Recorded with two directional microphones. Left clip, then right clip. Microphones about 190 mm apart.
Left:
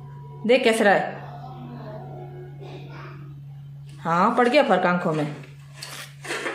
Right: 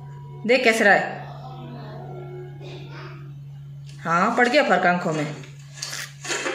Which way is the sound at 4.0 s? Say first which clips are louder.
Even; 10° left (ahead or behind).